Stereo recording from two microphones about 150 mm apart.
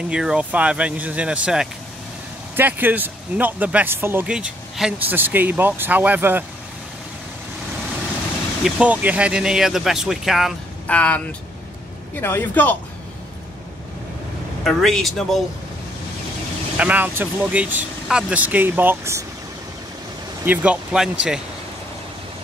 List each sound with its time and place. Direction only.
0.1 s speech: 5° right (ahead or behind)
8.6 s speech: 10° right (ahead or behind)
10.9 s speech: 10° left (ahead or behind)
14.6 s speech: centre (ahead or behind)
16.7 s speech: 10° right (ahead or behind)
20.4 s speech: 10° right (ahead or behind)